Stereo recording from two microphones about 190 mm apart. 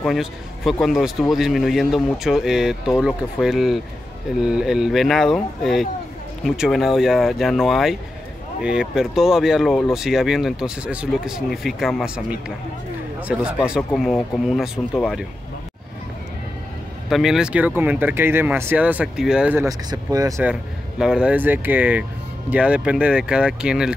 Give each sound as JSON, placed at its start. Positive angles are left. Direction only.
{"t": 0.0, "sound": "a man's voice", "side_deg": 0}
{"t": 17.1, "sound": "speech", "side_deg": 0}
{"t": 19.9, "sound": "speech", "side_deg": -20}
{"t": 21.0, "sound": "speech", "side_deg": -5}